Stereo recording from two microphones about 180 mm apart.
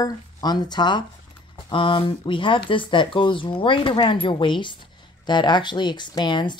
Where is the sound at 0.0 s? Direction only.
20° left (ahead or behind).